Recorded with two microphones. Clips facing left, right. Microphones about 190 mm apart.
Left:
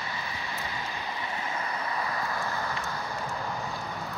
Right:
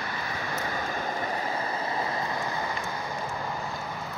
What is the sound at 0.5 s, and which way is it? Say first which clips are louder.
Vehicle: right 7 dB; 45° right (ahead or behind).